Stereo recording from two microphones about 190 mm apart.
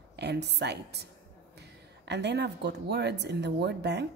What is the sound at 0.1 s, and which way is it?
Speech, 60° right (ahead or behind).